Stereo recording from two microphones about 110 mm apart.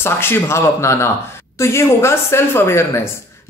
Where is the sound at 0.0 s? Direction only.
20° left (ahead or behind).